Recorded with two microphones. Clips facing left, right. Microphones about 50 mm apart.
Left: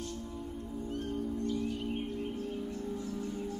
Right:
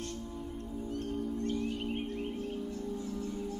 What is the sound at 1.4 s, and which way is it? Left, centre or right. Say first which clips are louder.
Music: even; right.